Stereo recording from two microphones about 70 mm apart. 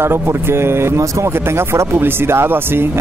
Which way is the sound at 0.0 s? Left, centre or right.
Right.